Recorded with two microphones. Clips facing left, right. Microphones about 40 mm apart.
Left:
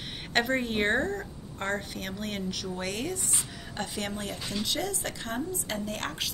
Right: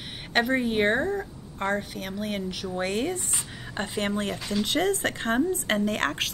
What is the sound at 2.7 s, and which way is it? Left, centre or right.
Speech, right.